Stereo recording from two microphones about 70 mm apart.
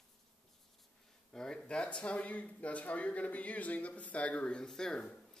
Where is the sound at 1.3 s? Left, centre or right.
Centre.